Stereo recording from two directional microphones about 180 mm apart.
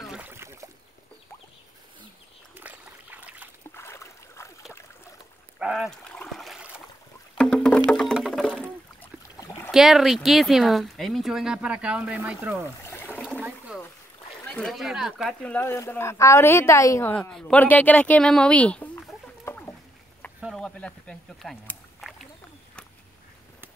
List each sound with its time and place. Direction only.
0.0 s boat: 5° right (ahead or behind)
2.6 s trickle: 10° right (ahead or behind)
3.7 s boat: 15° left (ahead or behind)
5.6 s a sound: 5° right (ahead or behind)
7.3 s music: 5° left (ahead or behind)
9.0 s boat: 10° left (ahead or behind)
9.7 s speech: centre (ahead or behind)
12.8 s a sound: 10° left (ahead or behind)
14.4 s speech: 5° left (ahead or behind)
17.1 s speech: 5° left (ahead or behind)
20.3 s a sound: 5° right (ahead or behind)
20.6 s a sound: 5° left (ahead or behind)